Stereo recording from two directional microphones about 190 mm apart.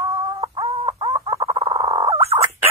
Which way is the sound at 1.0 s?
20° right (ahead or behind).